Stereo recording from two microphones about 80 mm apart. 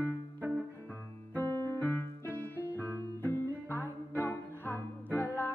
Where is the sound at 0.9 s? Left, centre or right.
Left.